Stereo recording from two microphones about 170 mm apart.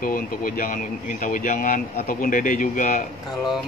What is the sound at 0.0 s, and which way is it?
Speech, 55° left (ahead or behind).